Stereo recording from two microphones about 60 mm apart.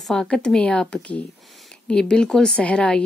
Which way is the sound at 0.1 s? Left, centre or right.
Centre.